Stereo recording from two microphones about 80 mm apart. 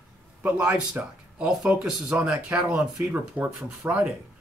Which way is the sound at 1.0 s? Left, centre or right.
Right.